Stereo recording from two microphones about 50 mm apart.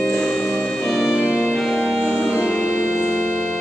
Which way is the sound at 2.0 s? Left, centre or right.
Centre.